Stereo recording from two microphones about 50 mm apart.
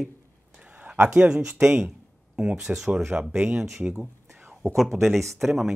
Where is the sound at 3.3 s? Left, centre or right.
Right.